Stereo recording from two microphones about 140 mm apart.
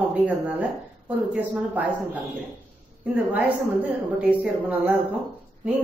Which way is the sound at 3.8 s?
10° right (ahead or behind).